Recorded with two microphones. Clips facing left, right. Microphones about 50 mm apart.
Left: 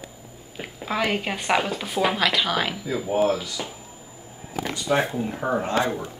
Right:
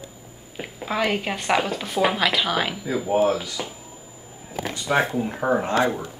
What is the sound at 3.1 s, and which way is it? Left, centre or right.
Speech, right.